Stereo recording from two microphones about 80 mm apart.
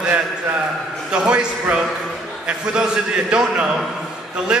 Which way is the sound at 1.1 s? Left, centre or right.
Centre.